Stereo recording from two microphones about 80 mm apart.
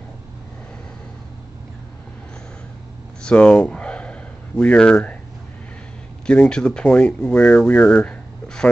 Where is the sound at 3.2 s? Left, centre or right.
Centre.